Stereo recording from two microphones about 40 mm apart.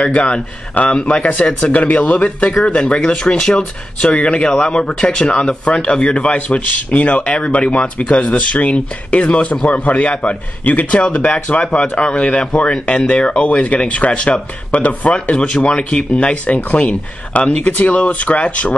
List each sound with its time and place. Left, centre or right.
0.0 s speech: left
1.3 s speech: left
2.6 s speech: left
6.3 s a man's voice: left
10.9 s speech: left
15.3 s speech: left